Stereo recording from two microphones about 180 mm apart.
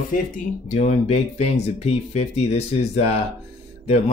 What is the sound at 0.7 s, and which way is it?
Speech, 35° left (ahead or behind).